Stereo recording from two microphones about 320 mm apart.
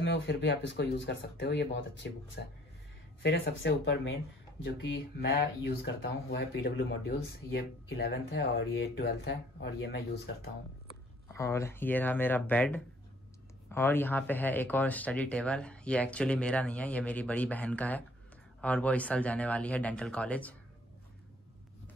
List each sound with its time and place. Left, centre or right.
0.0 s speech: left
5.8 s speech: left
11.3 s speech: centre